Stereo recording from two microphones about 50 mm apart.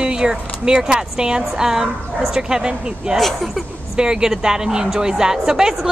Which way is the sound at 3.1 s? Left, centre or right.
Centre.